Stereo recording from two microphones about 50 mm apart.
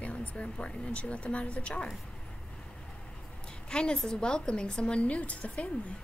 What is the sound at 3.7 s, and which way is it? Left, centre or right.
A woman's voice, centre.